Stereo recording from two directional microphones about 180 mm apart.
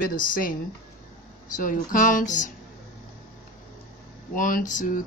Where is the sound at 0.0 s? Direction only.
50° left (ahead or behind).